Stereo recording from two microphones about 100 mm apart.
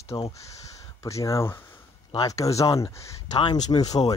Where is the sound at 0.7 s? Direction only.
30° left (ahead or behind).